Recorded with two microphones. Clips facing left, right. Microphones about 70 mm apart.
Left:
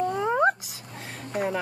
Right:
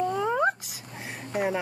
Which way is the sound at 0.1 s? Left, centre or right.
Centre.